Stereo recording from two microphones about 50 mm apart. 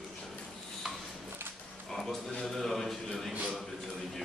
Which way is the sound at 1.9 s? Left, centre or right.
Centre.